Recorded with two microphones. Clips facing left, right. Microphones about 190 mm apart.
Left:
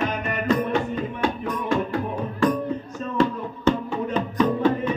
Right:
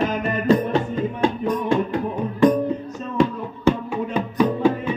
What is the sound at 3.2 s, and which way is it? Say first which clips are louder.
Music: right 2 dB; 10° right (ahead or behind).